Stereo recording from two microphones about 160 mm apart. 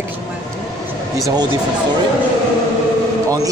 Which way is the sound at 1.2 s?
25° right (ahead or behind).